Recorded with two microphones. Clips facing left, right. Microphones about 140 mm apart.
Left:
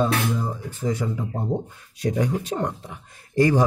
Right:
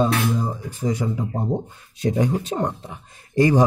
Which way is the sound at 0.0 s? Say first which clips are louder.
Right 2 dB; 15° right (ahead or behind).